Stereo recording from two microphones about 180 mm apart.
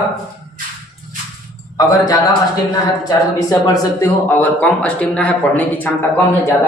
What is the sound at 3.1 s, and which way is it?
A man's voice, 20° left (ahead or behind).